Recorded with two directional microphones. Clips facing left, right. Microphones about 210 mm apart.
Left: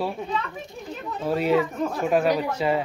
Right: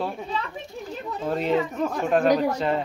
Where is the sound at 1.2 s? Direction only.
5° left (ahead or behind).